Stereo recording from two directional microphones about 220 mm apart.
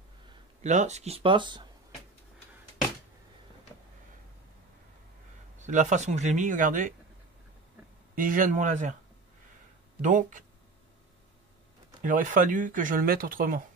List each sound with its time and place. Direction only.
0.7 s speech: 30° right (ahead or behind)
5.6 s speech: 35° right (ahead or behind)
8.1 s speech: 40° right (ahead or behind)
10.0 s speech: 35° right (ahead or behind)
12.0 s speech: 40° right (ahead or behind)